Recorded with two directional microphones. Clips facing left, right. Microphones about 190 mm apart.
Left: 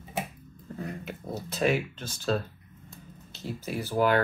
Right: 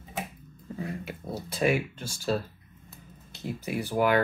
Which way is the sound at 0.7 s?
10° right (ahead or behind).